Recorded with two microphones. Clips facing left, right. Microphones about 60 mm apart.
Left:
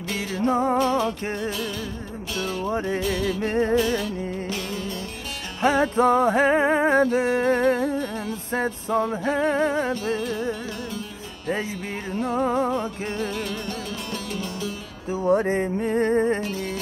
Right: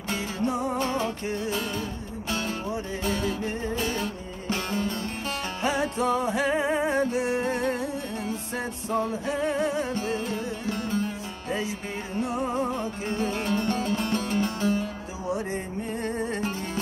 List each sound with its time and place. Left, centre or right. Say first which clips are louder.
0.5 s music: left 8 dB; left
0.7 s music: left 6 dB; right
3.3 s music: left 7 dB; left
3.8 s music: left 5 dB; right
5.6 s music: left 8 dB; left
10.1 s music: left 3 dB; right
12.2 s music: left 5 dB; left
12.7 s music: left 2 dB; right
15.2 s music: left 9 dB; left